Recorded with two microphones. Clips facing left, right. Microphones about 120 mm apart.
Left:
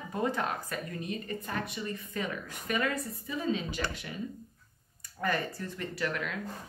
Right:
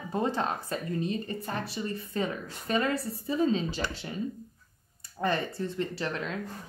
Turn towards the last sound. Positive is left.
turn(degrees=-30)  # may be behind; listen again after turning